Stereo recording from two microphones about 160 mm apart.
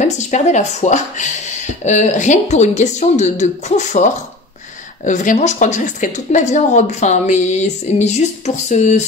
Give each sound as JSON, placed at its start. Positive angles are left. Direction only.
{"t": 0.0, "sound": "a woman's voice", "side_deg": 45}